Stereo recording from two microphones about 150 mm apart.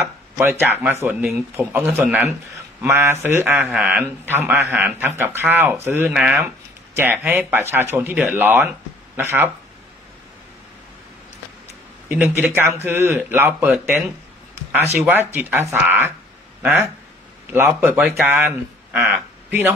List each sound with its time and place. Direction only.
0.0 s a sound: 15° right (ahead or behind)
1.0 s speech: 15° right (ahead or behind)
12.4 s speech: 15° right (ahead or behind)
15.0 s speech: 15° right (ahead or behind)
17.5 s speech: 15° right (ahead or behind)